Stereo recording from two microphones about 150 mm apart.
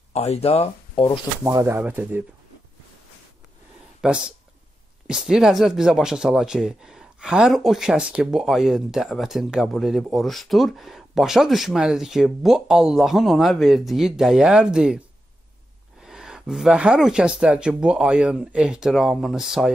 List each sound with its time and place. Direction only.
0.1 s speech: 45° left (ahead or behind)
1.4 s speech: 20° right (ahead or behind)
4.0 s speech: 5° right (ahead or behind)
16.0 s speech: 5° right (ahead or behind)